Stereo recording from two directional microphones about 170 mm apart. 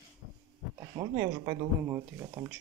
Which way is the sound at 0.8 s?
20° right (ahead or behind).